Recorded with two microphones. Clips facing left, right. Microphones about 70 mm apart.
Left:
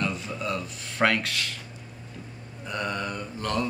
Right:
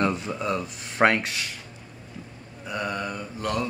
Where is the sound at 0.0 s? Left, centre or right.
Right.